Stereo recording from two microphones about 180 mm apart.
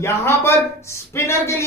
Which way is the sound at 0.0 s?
15° left (ahead or behind).